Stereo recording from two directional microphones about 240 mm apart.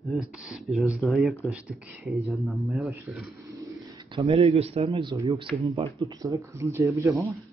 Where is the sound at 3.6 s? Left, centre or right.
Centre.